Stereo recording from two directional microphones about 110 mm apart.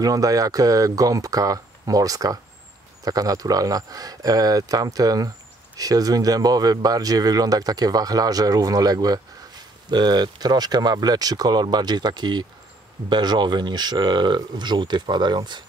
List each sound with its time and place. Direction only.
0.0 s speech: 35° right (ahead or behind)